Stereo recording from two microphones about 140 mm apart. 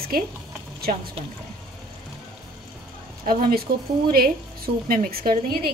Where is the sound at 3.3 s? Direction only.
90° right.